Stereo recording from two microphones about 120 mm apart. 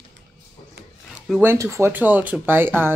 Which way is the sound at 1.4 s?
20° right (ahead or behind).